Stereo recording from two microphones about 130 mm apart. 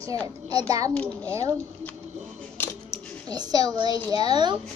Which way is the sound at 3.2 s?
30° right (ahead or behind).